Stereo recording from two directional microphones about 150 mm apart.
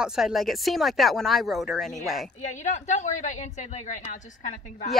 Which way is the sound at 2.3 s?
50° left (ahead or behind).